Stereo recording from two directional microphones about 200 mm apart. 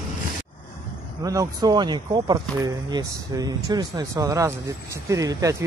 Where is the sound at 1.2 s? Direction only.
15° right (ahead or behind).